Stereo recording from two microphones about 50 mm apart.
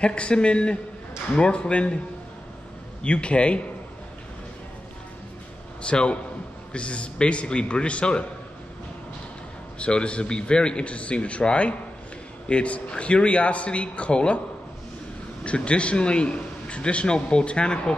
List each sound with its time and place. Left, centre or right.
0.0 s a man's voice: left
3.0 s a man's voice: left
5.8 s a man's voice: left
9.8 s a man's voice: left
15.4 s a man's voice: left